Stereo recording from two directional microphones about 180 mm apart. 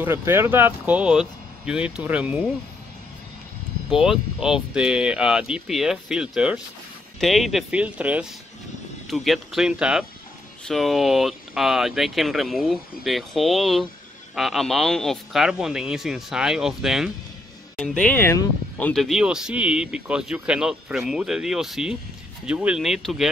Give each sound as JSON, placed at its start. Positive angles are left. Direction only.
{"t": 0.0, "sound": "speech", "side_deg": -15}
{"t": 3.9, "sound": "speech", "side_deg": -5}